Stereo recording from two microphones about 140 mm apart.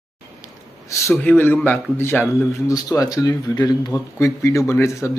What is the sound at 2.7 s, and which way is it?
Speech, 25° left (ahead or behind).